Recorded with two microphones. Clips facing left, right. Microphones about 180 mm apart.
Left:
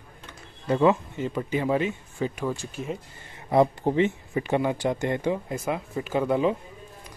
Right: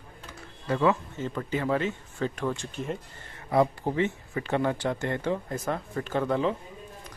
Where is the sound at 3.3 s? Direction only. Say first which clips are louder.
Left 3 dB; 20° left (ahead or behind).